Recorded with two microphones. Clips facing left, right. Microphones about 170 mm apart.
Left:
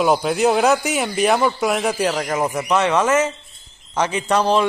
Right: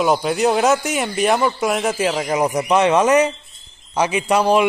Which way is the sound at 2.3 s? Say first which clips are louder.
Right 6 dB; 15° right (ahead or behind).